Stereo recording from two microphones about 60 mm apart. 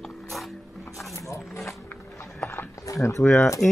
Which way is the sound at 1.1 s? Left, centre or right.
Left.